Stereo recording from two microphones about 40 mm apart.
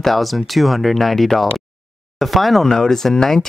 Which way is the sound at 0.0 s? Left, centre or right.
Centre.